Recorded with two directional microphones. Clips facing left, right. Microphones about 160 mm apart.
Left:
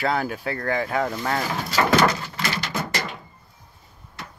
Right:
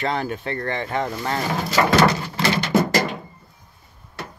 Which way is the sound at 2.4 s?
20° right (ahead or behind).